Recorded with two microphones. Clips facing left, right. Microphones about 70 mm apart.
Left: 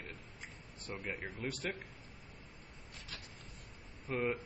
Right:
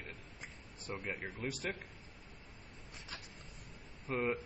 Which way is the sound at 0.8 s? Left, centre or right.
Centre.